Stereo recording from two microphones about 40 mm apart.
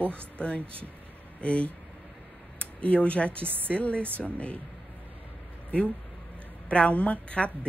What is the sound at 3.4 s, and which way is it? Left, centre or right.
Speech, right.